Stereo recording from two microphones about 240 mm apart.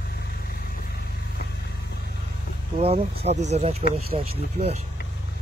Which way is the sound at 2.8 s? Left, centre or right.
Right.